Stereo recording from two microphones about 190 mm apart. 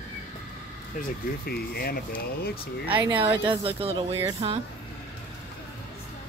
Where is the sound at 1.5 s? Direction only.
55° left (ahead or behind).